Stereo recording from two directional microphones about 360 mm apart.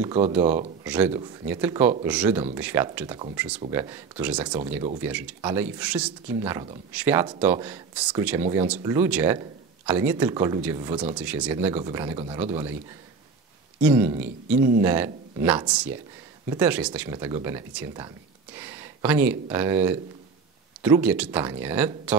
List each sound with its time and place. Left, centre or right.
0.0 s speech: centre
0.8 s speech: centre
13.7 s speech: centre